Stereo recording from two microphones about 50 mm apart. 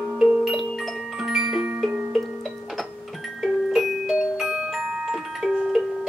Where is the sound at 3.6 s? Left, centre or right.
Centre.